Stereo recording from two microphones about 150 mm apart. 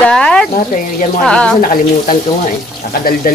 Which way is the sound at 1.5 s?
55° left (ahead or behind).